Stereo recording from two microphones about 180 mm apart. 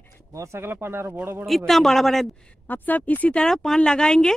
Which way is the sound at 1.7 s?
Centre (ahead or behind).